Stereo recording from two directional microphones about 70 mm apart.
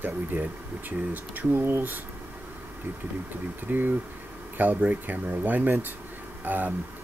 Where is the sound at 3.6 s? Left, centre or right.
Right.